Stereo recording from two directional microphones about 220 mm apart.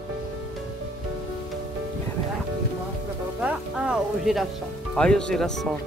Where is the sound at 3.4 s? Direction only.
5° right (ahead or behind).